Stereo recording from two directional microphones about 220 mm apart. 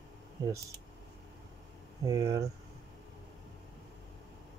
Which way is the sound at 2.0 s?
15° right (ahead or behind).